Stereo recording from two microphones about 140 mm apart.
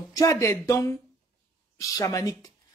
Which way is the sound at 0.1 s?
25° left (ahead or behind).